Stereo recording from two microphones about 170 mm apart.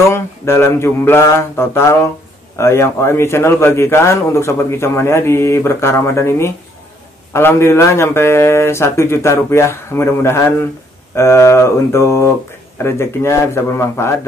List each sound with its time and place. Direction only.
0.1 s a man's voice: 15° left (ahead or behind)